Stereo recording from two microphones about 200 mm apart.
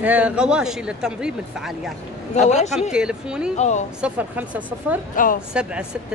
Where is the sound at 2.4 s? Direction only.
35° left (ahead or behind).